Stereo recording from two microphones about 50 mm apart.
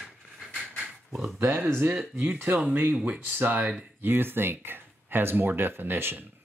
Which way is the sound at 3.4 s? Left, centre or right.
Right.